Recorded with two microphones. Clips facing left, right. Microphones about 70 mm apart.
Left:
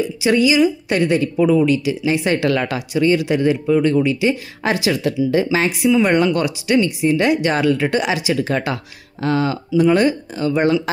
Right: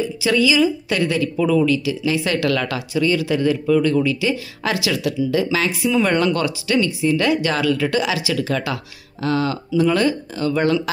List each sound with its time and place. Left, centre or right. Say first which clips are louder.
0.0 s speech: left 2 dB; left
5.9 s speech: left 3 dB; centre